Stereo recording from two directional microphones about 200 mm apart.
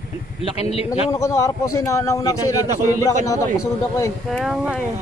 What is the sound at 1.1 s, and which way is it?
A man's voice, 15° left (ahead or behind).